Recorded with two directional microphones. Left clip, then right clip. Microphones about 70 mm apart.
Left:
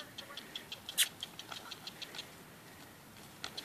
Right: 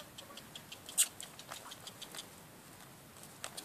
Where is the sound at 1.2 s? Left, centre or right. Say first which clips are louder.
Left 3 dB; right.